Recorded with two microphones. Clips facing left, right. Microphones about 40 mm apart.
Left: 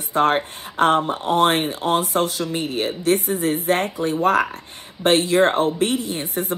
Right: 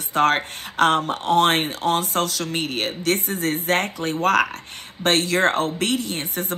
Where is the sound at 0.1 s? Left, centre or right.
Right.